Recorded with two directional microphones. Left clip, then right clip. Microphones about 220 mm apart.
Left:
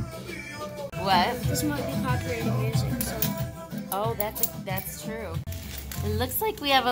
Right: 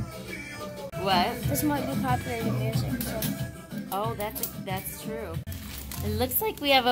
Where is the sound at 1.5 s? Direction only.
35° right (ahead or behind).